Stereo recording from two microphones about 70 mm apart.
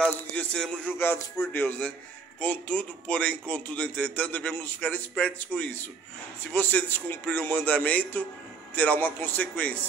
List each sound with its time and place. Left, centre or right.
0.0 s speech: centre
0.9 s speech: left